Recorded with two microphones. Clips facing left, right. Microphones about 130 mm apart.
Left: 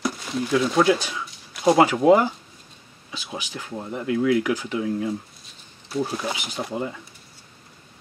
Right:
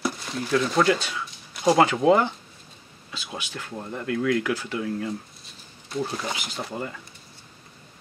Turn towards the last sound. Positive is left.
turn(degrees=15)  # may be behind; listen again after turning